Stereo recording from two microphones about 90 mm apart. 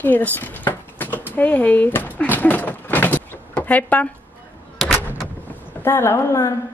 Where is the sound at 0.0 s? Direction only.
20° left (ahead or behind).